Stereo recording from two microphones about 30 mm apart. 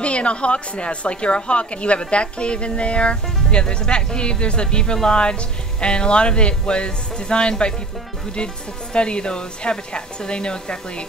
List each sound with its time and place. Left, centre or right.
0.0 s speech: left
8.9 s speech: left